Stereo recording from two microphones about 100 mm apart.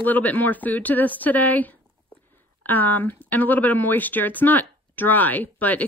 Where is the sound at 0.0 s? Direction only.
15° left (ahead or behind).